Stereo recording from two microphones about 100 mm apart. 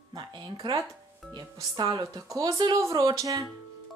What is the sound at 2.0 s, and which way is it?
Speech, 35° right (ahead or behind).